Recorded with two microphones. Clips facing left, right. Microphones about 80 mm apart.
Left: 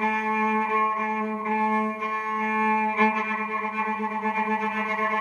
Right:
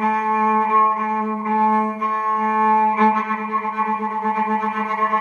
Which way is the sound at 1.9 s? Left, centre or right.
Centre.